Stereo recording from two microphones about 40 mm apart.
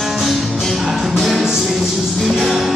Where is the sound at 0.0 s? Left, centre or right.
Centre.